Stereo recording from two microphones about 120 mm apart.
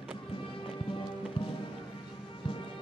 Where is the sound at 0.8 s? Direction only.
45° left (ahead or behind).